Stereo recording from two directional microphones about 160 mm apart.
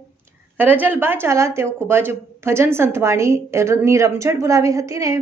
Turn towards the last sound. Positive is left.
turn(degrees=-20)  # may be behind; listen again after turning